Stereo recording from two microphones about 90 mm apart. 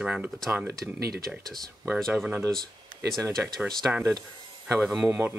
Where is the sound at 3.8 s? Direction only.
25° right (ahead or behind).